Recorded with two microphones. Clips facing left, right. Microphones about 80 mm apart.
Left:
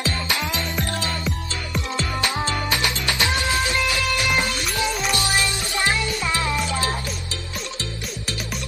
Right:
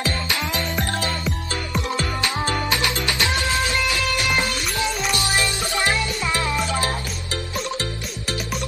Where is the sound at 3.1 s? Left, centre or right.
Left.